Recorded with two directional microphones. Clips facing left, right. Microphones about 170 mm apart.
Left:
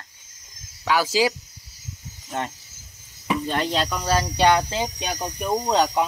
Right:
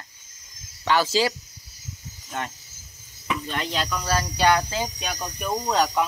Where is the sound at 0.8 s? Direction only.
10° left (ahead or behind).